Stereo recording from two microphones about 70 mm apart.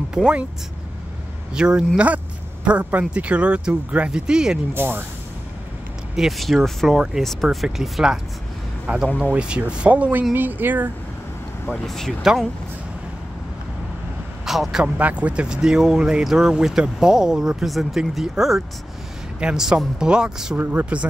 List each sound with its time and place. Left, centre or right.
0.1 s speech: centre
1.5 s speech: centre
4.7 s speech: right
6.1 s speech: centre; by 10.9 s right
11.7 s speech: centre
14.4 s a man's voice: centre
15.0 s speech: right
20.5 s speech: right